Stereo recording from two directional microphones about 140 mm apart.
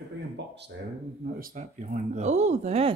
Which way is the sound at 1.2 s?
80° right.